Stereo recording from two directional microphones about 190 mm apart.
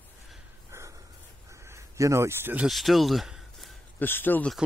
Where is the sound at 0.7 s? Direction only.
15° right (ahead or behind).